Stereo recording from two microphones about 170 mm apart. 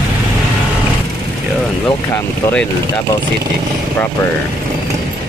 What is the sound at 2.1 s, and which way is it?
Speech, 5° left (ahead or behind).